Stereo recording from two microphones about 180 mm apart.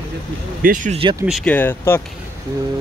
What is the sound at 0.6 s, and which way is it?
Speech, 50° right (ahead or behind).